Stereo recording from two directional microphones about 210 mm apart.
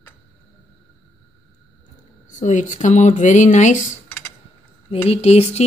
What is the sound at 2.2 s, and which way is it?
Speech, 35° left (ahead or behind).